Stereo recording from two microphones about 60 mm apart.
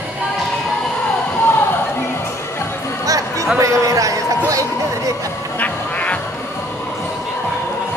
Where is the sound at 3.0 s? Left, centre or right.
Right.